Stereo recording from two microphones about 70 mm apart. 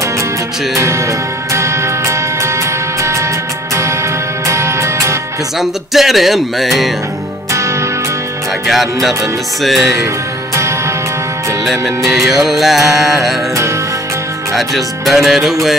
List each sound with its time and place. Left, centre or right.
0.7 s music: right
4.5 s music: right
5.6 s music: centre
8.6 s music: centre
11.6 s music: centre
14.5 s music: centre